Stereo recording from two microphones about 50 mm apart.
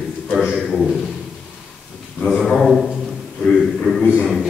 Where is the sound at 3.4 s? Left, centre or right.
Centre.